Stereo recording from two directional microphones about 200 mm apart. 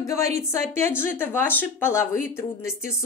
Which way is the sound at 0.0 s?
15° left (ahead or behind).